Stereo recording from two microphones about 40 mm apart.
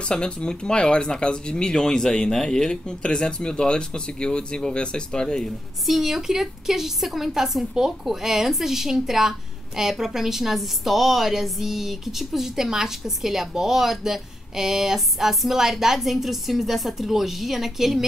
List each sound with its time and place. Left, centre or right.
0.1 s speech: left
5.9 s a woman's voice: centre